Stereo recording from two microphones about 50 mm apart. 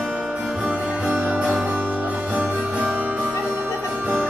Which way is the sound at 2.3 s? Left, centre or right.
Right.